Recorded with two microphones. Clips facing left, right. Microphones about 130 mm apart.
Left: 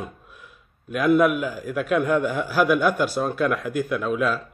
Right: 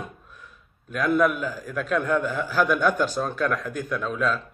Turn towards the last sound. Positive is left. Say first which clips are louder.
# left 3 dB
turn(degrees=10)  # may be behind; listen again after turning